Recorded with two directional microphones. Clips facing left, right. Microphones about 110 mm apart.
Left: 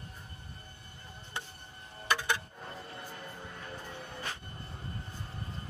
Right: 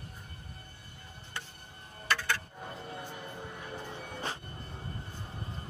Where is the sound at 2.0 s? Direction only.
15° left (ahead or behind).